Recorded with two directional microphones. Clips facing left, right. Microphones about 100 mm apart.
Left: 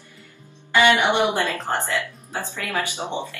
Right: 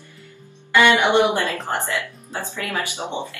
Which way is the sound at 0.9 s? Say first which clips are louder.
Right 2 dB; 20° right (ahead or behind).